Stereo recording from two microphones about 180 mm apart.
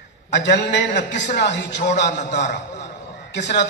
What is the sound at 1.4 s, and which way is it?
Speech, 75° left (ahead or behind).